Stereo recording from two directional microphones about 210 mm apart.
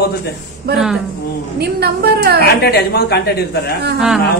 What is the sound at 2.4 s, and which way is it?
A woman's voice, 50° left (ahead or behind).